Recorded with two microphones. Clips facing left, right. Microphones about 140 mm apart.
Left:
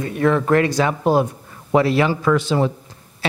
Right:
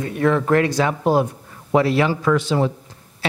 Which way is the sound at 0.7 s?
10° left (ahead or behind).